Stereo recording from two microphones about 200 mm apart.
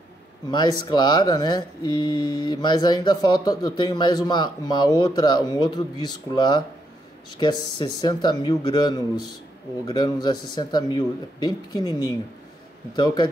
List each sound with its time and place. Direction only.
0.5 s speech: 20° left (ahead or behind)